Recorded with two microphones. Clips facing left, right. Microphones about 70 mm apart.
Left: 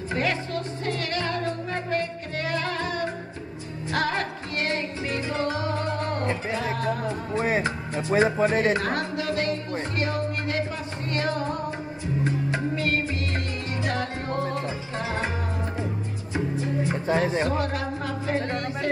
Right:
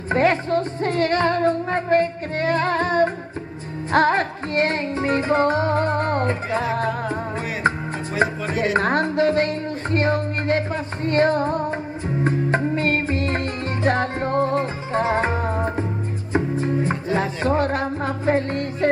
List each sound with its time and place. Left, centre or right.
0.1 s music: right
8.1 s music: left
8.7 s music: right